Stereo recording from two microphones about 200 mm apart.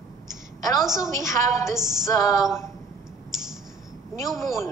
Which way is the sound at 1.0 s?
15° left (ahead or behind).